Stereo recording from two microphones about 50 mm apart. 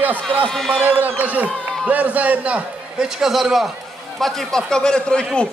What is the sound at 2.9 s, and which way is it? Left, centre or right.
Speech, centre.